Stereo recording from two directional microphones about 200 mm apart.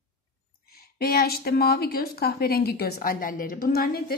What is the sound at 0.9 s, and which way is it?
A woman's voice, 50° left (ahead or behind).